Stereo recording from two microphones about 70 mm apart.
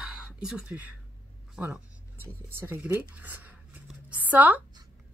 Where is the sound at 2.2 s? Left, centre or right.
Right.